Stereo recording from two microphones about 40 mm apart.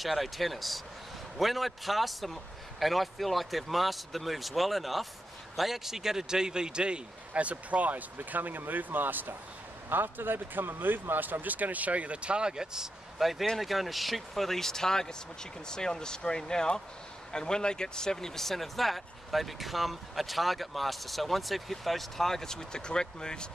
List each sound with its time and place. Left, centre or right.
0.0 s a man's voice: centre
13.2 s speech: centre